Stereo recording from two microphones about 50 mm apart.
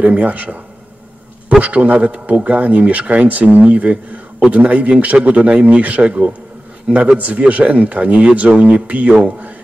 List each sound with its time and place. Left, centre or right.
0.0 s a man's voice: right
1.6 s speech: right